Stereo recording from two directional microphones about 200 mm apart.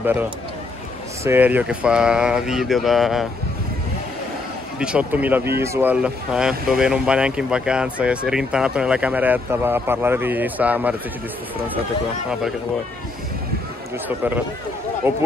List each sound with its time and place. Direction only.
0.0 s speech: 10° right (ahead or behind)
4.7 s speech: 5° right (ahead or behind)
14.0 s speech: 10° right (ahead or behind)